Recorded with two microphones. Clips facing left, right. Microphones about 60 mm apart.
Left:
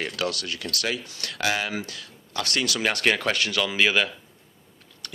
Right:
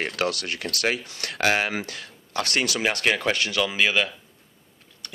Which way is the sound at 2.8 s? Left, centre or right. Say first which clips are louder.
Left 1 dB; centre.